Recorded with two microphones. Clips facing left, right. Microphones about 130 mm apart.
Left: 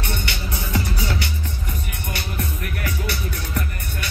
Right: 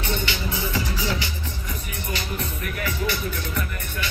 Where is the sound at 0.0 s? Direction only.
55° left (ahead or behind).